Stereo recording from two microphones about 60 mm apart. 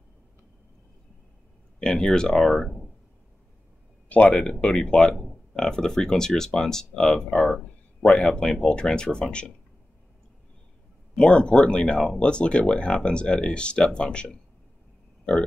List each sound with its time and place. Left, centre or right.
1.8 s speech: centre
4.1 s speech: centre
11.1 s speech: centre